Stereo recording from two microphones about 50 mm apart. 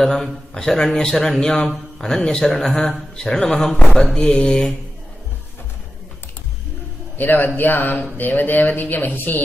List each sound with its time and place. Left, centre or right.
0.0 s a man's voice: centre
7.2 s speech: left